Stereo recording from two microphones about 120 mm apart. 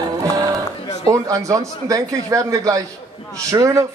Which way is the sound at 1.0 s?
25° right (ahead or behind).